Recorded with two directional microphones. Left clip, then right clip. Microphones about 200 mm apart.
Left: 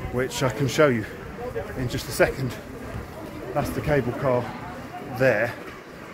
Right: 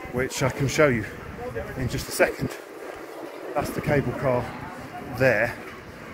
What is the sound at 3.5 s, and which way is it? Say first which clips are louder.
Speech: left 1 dB; 15° right (ahead or behind).